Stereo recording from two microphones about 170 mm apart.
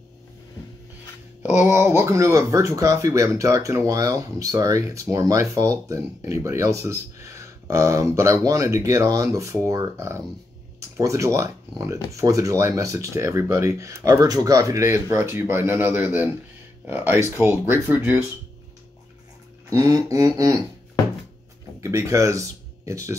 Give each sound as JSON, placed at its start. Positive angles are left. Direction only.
{"t": 1.5, "sound": "speech", "side_deg": -15}
{"t": 19.7, "sound": "music", "side_deg": -20}
{"t": 21.8, "sound": "speech", "side_deg": -15}